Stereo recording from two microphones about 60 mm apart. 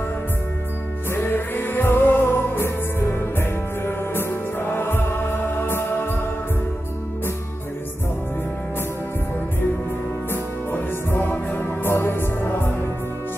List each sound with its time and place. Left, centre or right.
1.1 s music: left
10.3 s music: left